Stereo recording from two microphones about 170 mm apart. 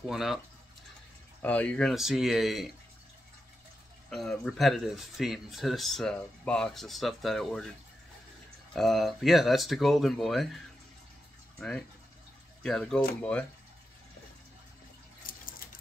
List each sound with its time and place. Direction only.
0.1 s speech: centre (ahead or behind)
1.4 s speech: 10° left (ahead or behind)
4.1 s speech: centre (ahead or behind)
8.7 s speech: centre (ahead or behind)
15.2 s water tap: 55° left (ahead or behind)